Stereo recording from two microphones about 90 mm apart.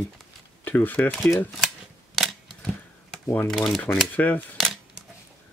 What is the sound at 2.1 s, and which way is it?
Camera, 5° left (ahead or behind).